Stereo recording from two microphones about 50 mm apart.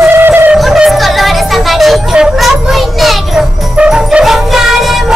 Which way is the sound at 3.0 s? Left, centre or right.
Centre.